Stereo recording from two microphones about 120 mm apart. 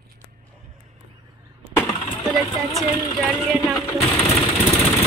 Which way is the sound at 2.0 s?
5° left (ahead or behind).